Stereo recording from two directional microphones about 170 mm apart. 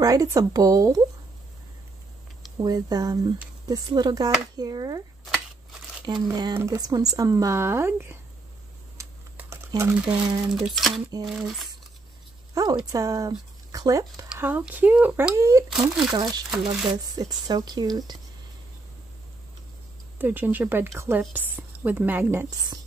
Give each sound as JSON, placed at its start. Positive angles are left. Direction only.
{"t": 0.0, "sound": "speech", "side_deg": -20}
{"t": 2.5, "sound": "speech", "side_deg": -20}
{"t": 6.0, "sound": "a woman's voice", "side_deg": -25}
{"t": 8.9, "sound": "computer keyboard", "side_deg": -15}
{"t": 10.2, "sound": "speech", "side_deg": -25}
{"t": 10.5, "sound": "speech", "side_deg": 0}
{"t": 12.5, "sound": "speech", "side_deg": -20}
{"t": 14.3, "sound": "a woman's voice", "side_deg": -10}
{"t": 15.9, "sound": "speech", "side_deg": -5}
{"t": 16.6, "sound": "speech", "side_deg": -25}
{"t": 20.2, "sound": "a woman's voice", "side_deg": -10}